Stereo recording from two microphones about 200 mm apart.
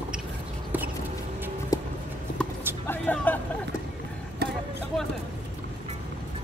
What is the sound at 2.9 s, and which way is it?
Vehicle, 10° left (ahead or behind).